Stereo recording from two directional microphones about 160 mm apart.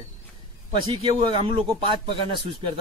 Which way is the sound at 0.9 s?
35° right (ahead or behind).